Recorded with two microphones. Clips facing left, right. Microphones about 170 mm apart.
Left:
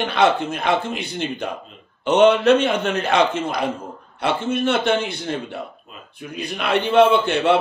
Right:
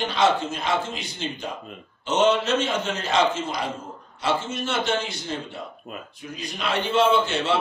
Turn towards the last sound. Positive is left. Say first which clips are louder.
# left 4 dB
turn(degrees=60)  # may be behind; listen again after turning